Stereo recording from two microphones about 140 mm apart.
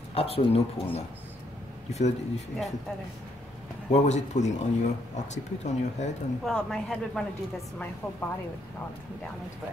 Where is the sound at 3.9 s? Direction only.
55° left (ahead or behind).